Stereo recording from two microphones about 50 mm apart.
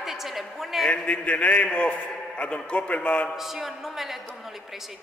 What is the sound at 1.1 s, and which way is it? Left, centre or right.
A man's voice, left.